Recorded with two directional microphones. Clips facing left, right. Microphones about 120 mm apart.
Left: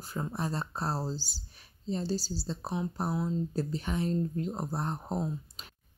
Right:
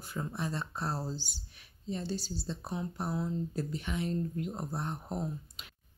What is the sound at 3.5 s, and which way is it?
Speech, 35° left (ahead or behind).